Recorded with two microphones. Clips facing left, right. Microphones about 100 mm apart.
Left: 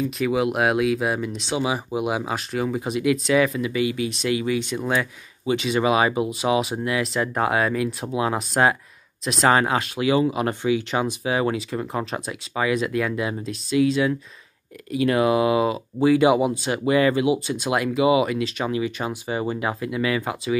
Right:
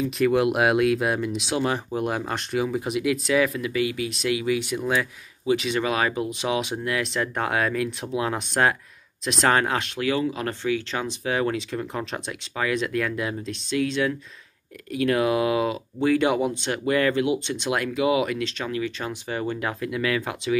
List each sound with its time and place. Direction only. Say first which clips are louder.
0.0 s speech: right 1 dB; centre (ahead or behind)
1.6 s speech: left 2 dB; 10° left (ahead or behind)
5.8 s speech: left 4 dB; 10° left (ahead or behind)
9.9 s speech: left 6 dB; 15° left (ahead or behind)